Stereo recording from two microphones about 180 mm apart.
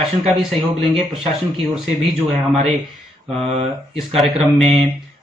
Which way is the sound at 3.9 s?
Centre (ahead or behind).